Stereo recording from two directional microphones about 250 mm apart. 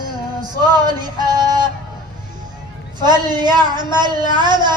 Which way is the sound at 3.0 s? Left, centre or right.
Centre.